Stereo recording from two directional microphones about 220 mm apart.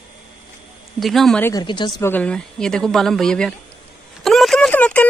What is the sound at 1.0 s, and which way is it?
Speech, centre (ahead or behind).